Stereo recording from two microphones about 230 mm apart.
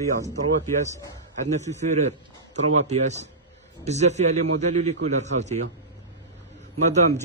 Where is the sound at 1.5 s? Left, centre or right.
Right.